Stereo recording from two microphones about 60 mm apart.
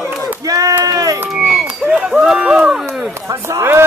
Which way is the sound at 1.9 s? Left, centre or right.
Centre.